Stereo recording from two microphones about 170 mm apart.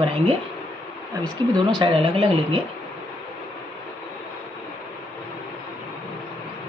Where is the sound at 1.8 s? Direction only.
30° right (ahead or behind).